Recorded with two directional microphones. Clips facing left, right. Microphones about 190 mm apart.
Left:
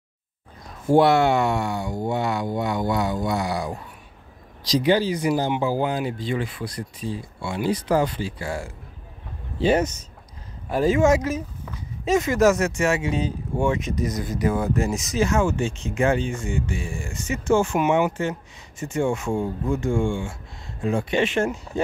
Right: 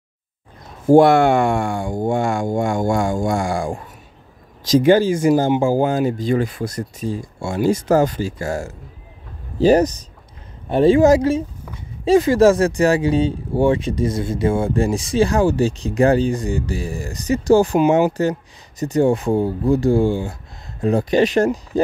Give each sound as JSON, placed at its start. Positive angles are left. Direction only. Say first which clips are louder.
{"t": 0.8, "sound": "speech", "louder": "right 6 dB", "side_deg": -45}